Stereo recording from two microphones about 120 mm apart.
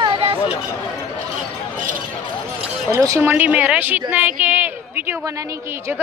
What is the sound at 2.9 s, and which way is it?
Speech, 25° right (ahead or behind).